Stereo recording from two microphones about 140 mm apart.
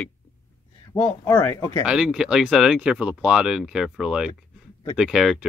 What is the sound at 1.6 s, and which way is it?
Speech, 30° left (ahead or behind).